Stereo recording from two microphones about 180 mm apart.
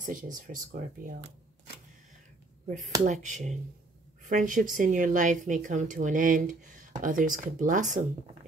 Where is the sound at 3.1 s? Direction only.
40° right (ahead or behind).